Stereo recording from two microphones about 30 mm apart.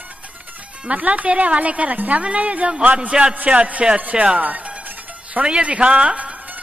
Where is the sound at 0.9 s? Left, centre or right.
Right.